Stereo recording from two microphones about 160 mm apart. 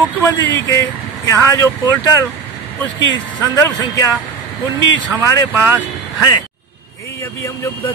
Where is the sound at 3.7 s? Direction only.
25° left (ahead or behind).